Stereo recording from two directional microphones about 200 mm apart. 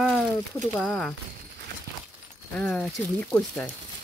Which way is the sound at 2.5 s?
5° left (ahead or behind).